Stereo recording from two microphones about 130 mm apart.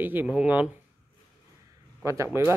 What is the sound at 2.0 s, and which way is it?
Speech, 25° right (ahead or behind).